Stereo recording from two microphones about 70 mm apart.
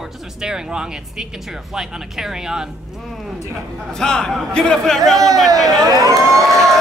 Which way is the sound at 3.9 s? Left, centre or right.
Centre.